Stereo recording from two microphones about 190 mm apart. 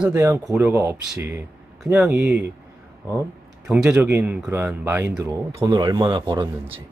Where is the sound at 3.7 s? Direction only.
5° right (ahead or behind); by 6.8 s 25° right (ahead or behind).